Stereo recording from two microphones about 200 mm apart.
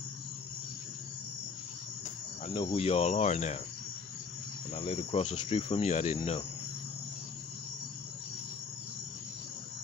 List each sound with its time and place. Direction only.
2.4 s cricket: 30° left (ahead or behind)
4.7 s speech: 30° left (ahead or behind)